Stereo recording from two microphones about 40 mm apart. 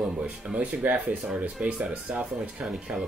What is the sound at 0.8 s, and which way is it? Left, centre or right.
Speech, right.